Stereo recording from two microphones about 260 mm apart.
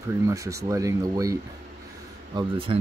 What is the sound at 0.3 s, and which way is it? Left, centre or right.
Speech, centre.